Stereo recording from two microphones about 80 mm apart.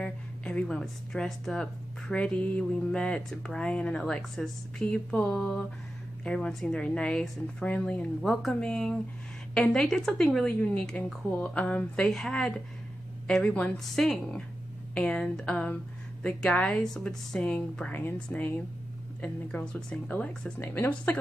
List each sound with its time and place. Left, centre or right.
0.0 s speech: centre
8.2 s speech: centre
13.9 s speech: centre; by 21.2 s left